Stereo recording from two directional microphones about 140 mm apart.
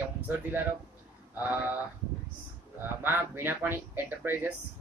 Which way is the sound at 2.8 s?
15° right (ahead or behind).